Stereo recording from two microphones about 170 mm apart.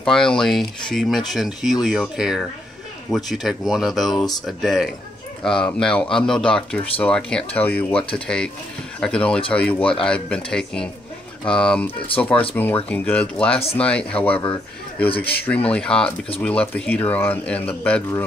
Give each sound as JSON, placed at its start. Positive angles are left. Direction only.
{"t": 0.0, "sound": "speech", "side_deg": 5}
{"t": 9.0, "sound": "speech", "side_deg": 5}
{"t": 14.4, "sound": "speech", "side_deg": 20}
{"t": 15.1, "sound": "speech", "side_deg": 10}